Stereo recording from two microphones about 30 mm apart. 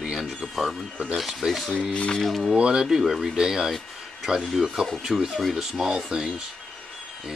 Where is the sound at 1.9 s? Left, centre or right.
Left.